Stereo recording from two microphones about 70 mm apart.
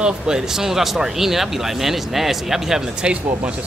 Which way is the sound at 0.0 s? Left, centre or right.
Centre.